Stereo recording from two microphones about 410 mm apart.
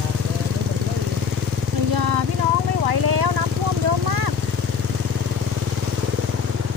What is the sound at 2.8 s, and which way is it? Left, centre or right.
Vehicle, right.